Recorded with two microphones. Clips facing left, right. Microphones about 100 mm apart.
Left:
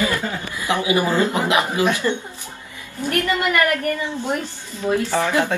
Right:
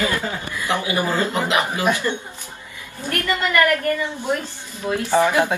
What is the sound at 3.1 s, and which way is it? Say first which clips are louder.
Speech: left 2 dB; 20° left (ahead or behind).